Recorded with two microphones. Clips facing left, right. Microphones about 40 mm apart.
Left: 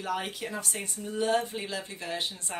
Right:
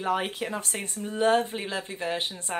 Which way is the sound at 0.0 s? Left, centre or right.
Right.